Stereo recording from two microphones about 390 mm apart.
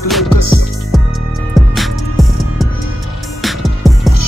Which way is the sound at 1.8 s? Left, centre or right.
Centre.